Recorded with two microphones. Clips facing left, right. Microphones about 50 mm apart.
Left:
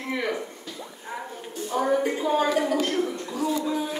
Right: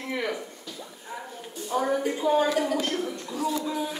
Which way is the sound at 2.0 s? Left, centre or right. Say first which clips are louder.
Even; left.